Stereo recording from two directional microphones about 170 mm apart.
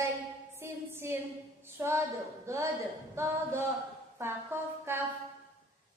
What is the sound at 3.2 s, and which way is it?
Singing, 15° right (ahead or behind).